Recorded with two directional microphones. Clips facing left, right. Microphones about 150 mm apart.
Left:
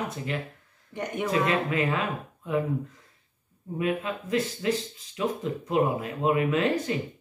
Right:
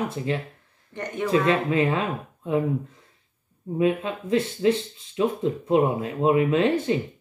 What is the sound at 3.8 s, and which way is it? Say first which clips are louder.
Speech: right 5 dB; 25° right (ahead or behind).